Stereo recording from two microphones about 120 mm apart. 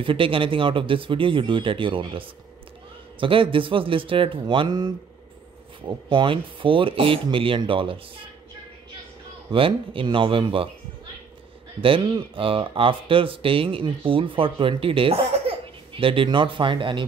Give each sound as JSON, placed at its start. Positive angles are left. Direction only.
{"t": 0.0, "sound": "speech", "side_deg": -45}
{"t": 9.5, "sound": "speech", "side_deg": -50}
{"t": 11.8, "sound": "speech", "side_deg": -45}